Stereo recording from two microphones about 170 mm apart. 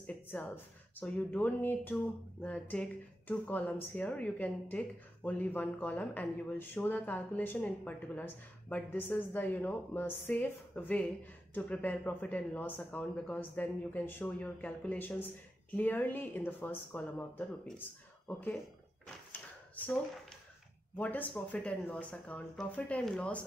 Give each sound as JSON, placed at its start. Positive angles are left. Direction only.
{"t": 0.0, "sound": "music", "side_deg": 10}
{"t": 0.9, "sound": "speech", "side_deg": 10}
{"t": 20.9, "sound": "speech", "side_deg": 10}